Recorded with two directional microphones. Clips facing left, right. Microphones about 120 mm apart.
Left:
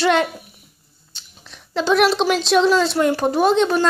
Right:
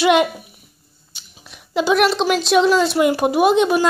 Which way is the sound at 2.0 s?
Centre (ahead or behind).